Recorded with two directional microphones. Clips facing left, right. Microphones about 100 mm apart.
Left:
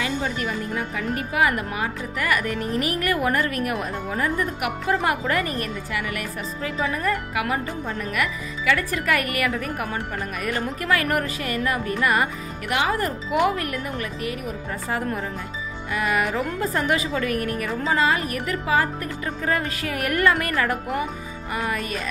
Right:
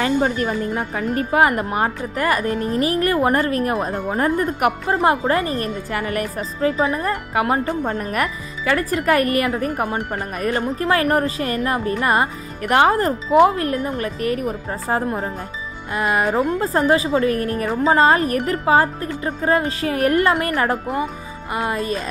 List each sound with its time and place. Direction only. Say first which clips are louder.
0.0 s a woman's voice: right 7 dB; 40° right (ahead or behind)